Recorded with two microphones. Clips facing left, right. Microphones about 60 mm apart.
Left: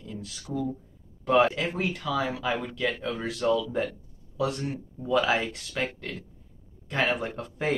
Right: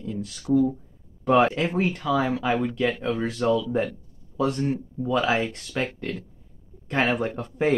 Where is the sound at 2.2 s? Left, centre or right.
Right.